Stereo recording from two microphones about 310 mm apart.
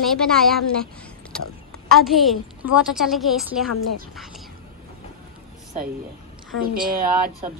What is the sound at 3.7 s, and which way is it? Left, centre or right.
Speech, left.